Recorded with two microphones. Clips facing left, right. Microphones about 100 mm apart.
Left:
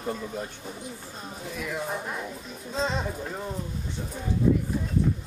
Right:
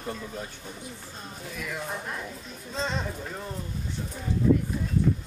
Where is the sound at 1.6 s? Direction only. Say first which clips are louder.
Left 3 dB; centre (ahead or behind).